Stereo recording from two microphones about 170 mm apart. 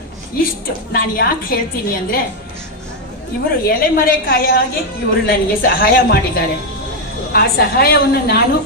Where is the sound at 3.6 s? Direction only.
60° left (ahead or behind).